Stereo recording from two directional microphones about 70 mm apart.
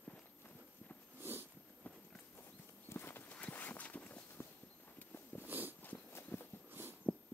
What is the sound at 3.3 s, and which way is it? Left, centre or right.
Walk, left.